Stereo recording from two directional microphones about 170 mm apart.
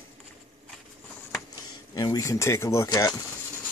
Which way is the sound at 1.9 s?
20° left (ahead or behind).